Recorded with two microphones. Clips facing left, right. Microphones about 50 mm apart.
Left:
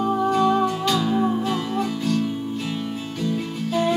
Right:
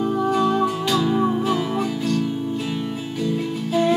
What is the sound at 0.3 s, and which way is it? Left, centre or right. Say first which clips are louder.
Music: even; centre.